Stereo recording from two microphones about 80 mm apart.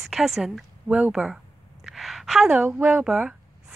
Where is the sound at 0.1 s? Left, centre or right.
Centre.